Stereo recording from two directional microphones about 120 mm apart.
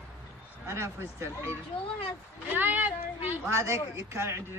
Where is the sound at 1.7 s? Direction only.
55° left (ahead or behind).